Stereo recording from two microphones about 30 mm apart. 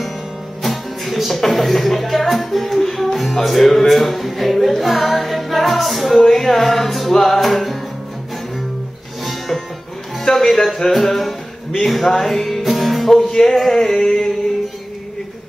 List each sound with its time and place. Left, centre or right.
0.6 s music: centre
9.2 s music: centre
10.2 s music: centre
13.1 s music: centre